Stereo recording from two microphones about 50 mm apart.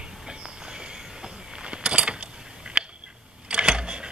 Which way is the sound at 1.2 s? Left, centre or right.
Centre.